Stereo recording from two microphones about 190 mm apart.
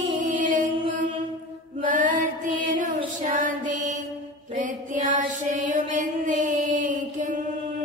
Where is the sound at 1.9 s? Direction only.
45° right (ahead or behind).